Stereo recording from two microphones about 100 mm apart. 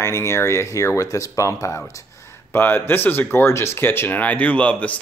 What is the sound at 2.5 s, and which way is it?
Speech, 20° left (ahead or behind).